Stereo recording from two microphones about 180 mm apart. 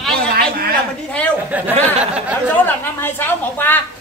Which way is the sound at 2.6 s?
10° left (ahead or behind).